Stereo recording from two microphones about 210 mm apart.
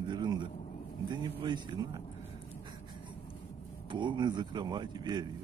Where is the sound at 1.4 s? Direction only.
20° right (ahead or behind).